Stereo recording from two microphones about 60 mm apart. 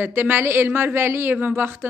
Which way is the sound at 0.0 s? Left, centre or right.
Right.